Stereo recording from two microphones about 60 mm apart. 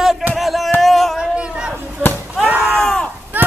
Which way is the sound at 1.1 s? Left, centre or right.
Centre.